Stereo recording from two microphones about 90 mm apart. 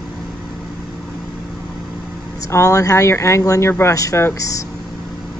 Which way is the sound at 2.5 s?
35° left (ahead or behind).